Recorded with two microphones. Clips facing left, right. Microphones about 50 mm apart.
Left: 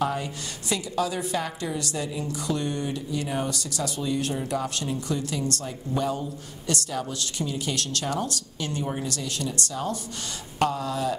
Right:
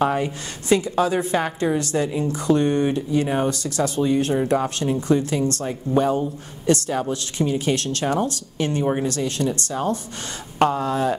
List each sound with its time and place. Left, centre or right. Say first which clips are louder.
0.0 s a woman's voice: right 6 dB; right